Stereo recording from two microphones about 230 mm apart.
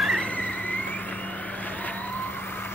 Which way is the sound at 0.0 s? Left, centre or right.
Centre.